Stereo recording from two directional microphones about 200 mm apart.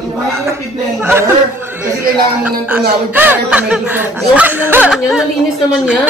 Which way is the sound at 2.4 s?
10° right (ahead or behind).